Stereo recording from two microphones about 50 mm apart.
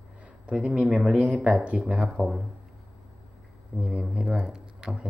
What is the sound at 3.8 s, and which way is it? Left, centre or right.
Speech, right.